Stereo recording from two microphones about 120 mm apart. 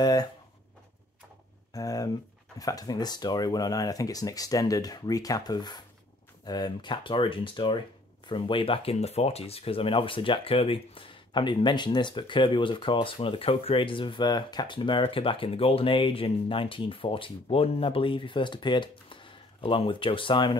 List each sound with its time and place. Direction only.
0.0 s speech: 35° left (ahead or behind)
1.7 s speech: 30° left (ahead or behind); by 8.9 s 50° left (ahead or behind)
8.9 s speech: 60° left (ahead or behind); by 20.5 s 40° left (ahead or behind)